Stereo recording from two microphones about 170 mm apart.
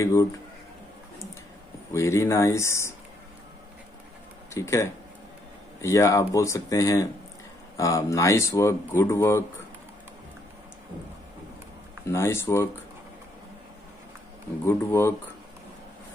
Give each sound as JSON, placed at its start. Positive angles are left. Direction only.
{"t": 0.0, "sound": "speech", "side_deg": 20}
{"t": 1.9, "sound": "speech", "side_deg": 15}
{"t": 4.6, "sound": "speech", "side_deg": 15}
{"t": 12.1, "sound": "speech", "side_deg": 15}
{"t": 14.6, "sound": "speech", "side_deg": 15}